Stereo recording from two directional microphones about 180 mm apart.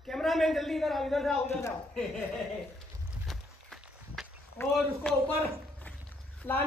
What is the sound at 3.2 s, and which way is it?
Walk, centre (ahead or behind).